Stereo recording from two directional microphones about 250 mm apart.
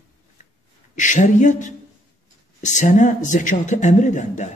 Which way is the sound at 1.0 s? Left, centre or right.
Left.